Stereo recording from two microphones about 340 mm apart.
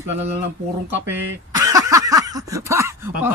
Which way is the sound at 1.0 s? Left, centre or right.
Centre.